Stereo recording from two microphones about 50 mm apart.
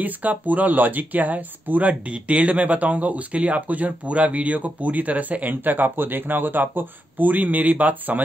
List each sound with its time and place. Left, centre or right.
0.0 s speech: right